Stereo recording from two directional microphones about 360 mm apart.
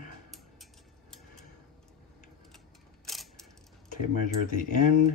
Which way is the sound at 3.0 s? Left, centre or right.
Centre.